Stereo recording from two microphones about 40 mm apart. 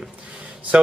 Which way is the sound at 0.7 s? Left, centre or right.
Right.